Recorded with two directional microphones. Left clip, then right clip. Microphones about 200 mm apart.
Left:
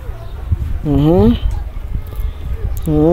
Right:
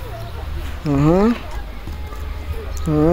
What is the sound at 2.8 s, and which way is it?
Speech, 25° left (ahead or behind).